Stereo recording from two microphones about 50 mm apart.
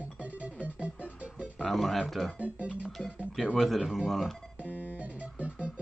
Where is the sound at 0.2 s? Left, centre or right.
Right.